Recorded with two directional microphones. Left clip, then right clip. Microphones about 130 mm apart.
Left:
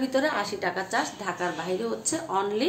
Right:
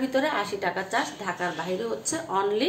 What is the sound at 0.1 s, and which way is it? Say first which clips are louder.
A woman's voice: even; 20° left (ahead or behind).